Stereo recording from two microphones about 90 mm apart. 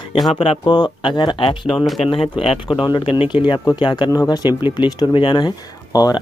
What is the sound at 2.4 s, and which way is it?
Speech, 80° left.